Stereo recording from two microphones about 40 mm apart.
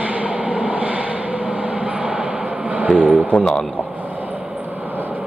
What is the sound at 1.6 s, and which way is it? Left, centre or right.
Vehicle, right.